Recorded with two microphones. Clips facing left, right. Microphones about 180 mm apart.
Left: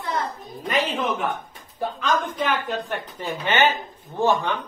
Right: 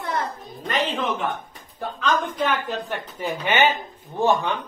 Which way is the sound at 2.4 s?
Centre (ahead or behind).